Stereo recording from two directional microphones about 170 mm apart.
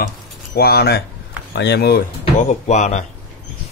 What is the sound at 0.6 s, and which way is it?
Speech, 70° left (ahead or behind).